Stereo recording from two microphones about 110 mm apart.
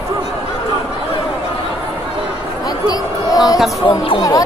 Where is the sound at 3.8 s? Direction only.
55° left (ahead or behind).